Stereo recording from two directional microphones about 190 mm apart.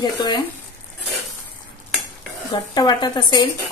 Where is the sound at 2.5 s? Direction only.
20° left (ahead or behind).